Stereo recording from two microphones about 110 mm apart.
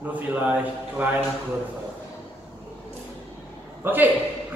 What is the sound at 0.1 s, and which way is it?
Speech, 15° right (ahead or behind).